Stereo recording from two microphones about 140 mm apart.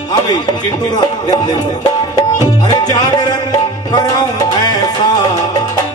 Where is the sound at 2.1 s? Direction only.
25° left (ahead or behind).